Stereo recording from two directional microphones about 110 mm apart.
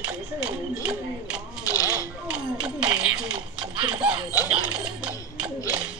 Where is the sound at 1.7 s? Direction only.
30° left (ahead or behind).